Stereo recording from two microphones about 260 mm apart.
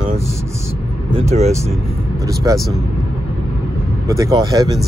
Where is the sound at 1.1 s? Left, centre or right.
Right.